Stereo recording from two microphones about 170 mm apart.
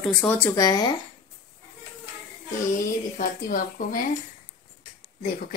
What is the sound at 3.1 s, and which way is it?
Speech, 50° left (ahead or behind).